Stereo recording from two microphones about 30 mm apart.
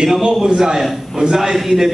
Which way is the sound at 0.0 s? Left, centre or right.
Right.